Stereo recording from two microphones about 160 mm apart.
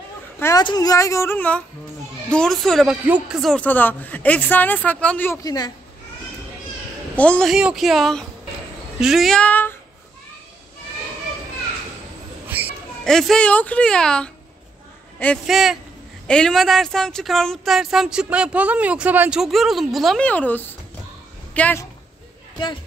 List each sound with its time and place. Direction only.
0.4 s a woman's voice: 20° left (ahead or behind)
7.2 s speech: 5° left (ahead or behind)
12.4 s children playing: 10° right (ahead or behind)
13.0 s speech: 5° left (ahead or behind)
15.4 s a woman's voice: 5° right (ahead or behind)